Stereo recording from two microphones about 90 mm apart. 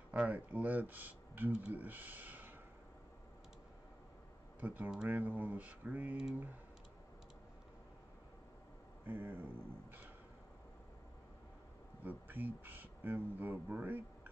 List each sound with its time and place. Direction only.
0.1 s speech: 15° right (ahead or behind)
4.6 s speech: 20° right (ahead or behind)
9.0 s speech: 20° right (ahead or behind)
12.0 s speech: 20° right (ahead or behind)